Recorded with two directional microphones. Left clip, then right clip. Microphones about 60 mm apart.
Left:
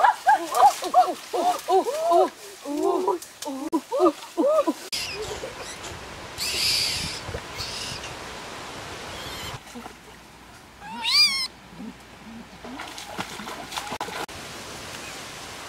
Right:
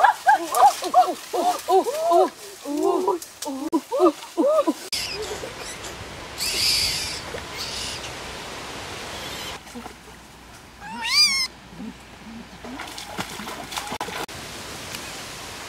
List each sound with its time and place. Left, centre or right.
0.0 s dog: centre
7.5 s owl: centre
8.5 s pink noise: right
10.9 s cat: centre
12.7 s splash: centre